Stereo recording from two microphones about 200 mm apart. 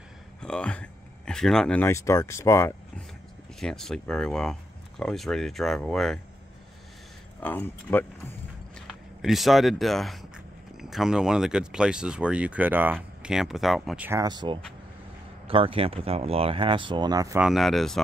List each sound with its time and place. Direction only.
0.4 s speech: 5° left (ahead or behind)
3.5 s speech: centre (ahead or behind)
7.3 s speech: 10° left (ahead or behind)
8.7 s speech: centre (ahead or behind)
14.2 s speech: 20° right (ahead or behind)
17.4 s speech: centre (ahead or behind)